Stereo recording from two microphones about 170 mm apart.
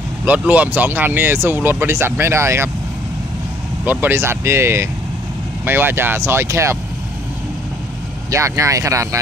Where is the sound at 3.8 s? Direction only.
10° right (ahead or behind).